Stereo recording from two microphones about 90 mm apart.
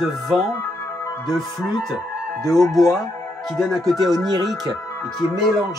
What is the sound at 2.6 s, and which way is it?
Speech, centre (ahead or behind).